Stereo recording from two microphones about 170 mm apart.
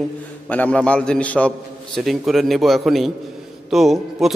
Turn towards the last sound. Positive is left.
turn(degrees=0)  # may be behind; listen again after turning